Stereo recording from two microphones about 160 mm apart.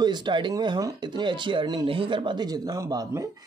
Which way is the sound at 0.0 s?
30° right (ahead or behind).